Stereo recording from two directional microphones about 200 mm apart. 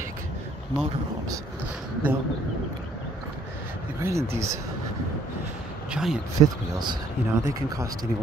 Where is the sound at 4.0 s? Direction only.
15° right (ahead or behind).